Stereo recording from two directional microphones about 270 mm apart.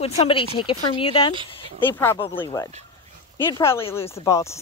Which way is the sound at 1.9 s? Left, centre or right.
Centre.